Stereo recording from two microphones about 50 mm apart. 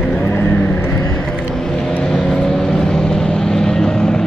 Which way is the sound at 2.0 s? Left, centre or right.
Centre.